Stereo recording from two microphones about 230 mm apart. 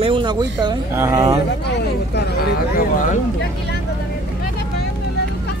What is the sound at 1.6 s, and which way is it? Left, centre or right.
Speech, left.